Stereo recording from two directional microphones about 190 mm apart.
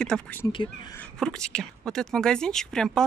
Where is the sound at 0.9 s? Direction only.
5° left (ahead or behind).